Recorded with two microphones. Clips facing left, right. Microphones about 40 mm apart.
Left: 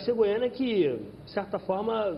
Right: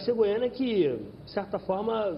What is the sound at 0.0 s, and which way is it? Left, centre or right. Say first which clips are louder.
A man's voice: even; centre.